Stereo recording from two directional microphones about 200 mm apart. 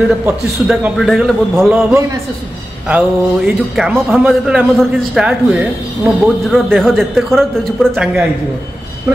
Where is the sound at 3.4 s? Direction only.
5° right (ahead or behind).